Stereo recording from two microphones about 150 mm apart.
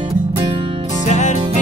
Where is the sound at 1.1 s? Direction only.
50° left (ahead or behind).